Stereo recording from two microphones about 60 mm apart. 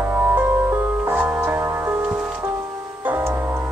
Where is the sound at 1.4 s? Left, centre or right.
Right.